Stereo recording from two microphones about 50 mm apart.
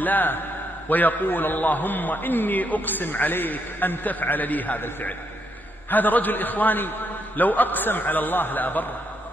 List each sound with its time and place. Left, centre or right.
0.0 s a man's voice: left